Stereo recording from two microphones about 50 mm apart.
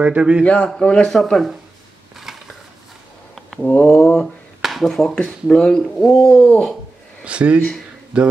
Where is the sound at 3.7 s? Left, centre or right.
Left.